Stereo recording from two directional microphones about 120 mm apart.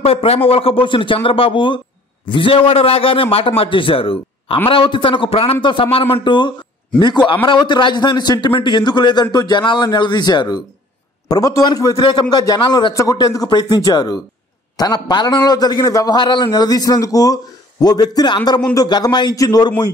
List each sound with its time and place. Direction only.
0.0 s a man's voice: 55° left (ahead or behind)
7.6 s a man's voice: 40° left (ahead or behind)